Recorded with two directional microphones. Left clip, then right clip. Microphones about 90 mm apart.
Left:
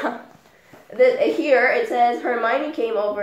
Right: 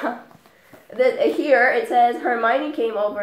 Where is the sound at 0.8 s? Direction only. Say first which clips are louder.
Left 2 dB; 25° right (ahead or behind).